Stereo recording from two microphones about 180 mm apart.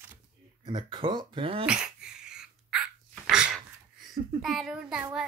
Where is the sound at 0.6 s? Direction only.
25° right (ahead or behind).